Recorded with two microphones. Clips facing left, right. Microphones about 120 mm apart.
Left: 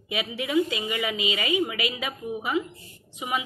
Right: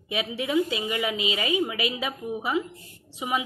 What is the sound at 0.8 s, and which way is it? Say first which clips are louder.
Speech: right 1 dB; 15° right (ahead or behind).